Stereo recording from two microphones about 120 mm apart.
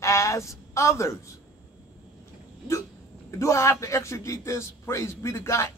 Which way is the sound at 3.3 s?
25° left (ahead or behind).